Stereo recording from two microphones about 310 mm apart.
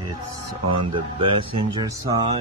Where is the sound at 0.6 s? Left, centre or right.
Centre.